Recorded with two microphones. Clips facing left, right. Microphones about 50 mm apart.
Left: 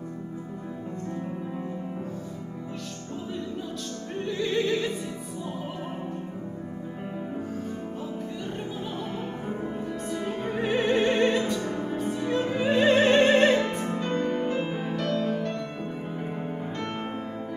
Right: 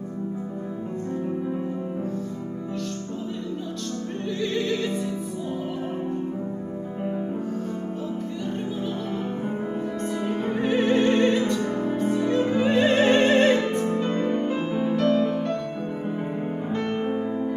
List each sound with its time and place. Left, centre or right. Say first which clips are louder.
4.3 s music: even; centre
10.1 s opera: right 3 dB; centre
13.9 s music: right 3 dB; centre
15.1 s music: right 4 dB; centre
16.7 s music: right 7 dB; centre